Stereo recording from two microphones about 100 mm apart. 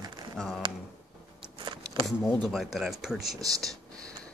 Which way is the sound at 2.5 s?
Centre (ahead or behind).